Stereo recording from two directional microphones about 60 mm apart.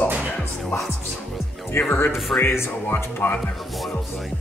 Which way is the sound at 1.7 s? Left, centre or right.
Left.